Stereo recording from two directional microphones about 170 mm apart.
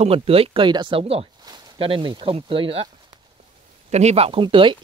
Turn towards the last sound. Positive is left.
turn(degrees=-30)  # may be behind; listen again after turning